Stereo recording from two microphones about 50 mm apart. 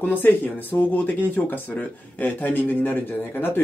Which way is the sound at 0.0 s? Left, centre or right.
Left.